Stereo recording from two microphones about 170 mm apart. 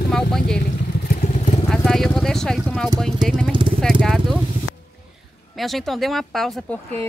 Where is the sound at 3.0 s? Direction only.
5° left (ahead or behind).